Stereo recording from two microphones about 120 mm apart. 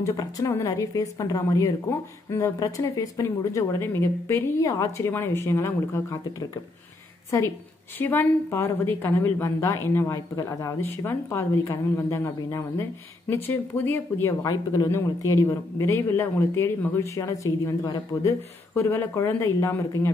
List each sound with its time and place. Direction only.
0.0 s a woman's voice: 30° left (ahead or behind)
7.2 s a woman's voice: 25° left (ahead or behind)
10.9 s a woman's voice: 15° left (ahead or behind)
14.4 s a woman's voice: 30° left (ahead or behind)